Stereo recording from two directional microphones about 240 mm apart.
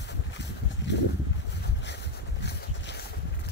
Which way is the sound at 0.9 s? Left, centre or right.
Left.